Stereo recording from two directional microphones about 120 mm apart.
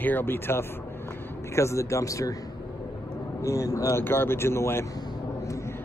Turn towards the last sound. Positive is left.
turn(degrees=20)  # may be behind; listen again after turning